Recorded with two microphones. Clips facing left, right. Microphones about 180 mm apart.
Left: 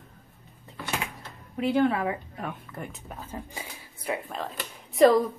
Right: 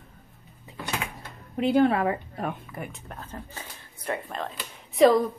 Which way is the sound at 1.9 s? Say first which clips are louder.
Right 3 dB; 45° right (ahead or behind).